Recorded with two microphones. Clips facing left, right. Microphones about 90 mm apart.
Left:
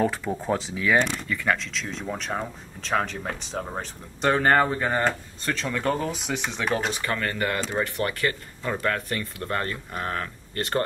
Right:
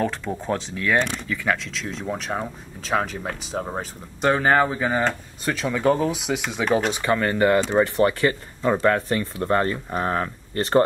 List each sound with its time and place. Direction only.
0.0 s speech: 5° left (ahead or behind)
6.9 s speech: 20° right (ahead or behind)